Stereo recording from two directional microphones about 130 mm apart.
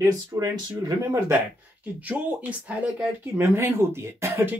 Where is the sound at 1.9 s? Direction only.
10° right (ahead or behind).